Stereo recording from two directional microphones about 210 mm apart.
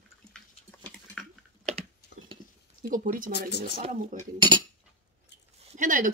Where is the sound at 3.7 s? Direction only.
40° right (ahead or behind).